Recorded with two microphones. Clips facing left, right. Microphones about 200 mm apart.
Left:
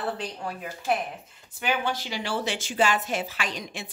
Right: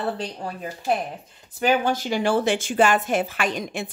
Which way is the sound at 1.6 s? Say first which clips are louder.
Right 7 dB; 45° right (ahead or behind).